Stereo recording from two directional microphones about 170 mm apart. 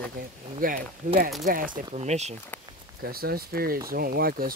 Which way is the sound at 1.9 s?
40° right (ahead or behind).